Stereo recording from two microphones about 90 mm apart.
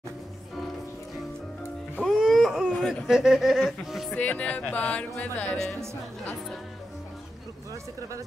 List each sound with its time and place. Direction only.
2.0 s wail: centre (ahead or behind)
2.9 s speech: 5° right (ahead or behind)
4.2 s speech: 15° left (ahead or behind)